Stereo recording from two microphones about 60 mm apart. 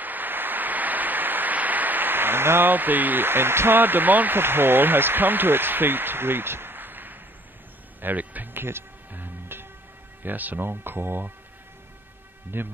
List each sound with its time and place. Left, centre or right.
0.0 s a sound: right
8.0 s speech: right
8.6 s music: right
10.2 s speech: right
12.5 s speech: right